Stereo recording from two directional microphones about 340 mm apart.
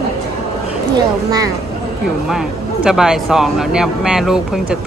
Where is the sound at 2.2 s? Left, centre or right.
Centre.